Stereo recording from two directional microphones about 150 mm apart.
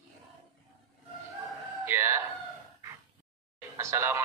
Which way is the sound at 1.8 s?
15° right (ahead or behind).